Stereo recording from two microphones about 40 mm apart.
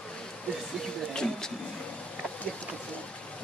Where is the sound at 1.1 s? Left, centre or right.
Centre.